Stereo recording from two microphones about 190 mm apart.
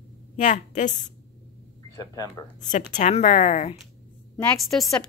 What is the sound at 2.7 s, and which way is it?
Speech, 40° left (ahead or behind).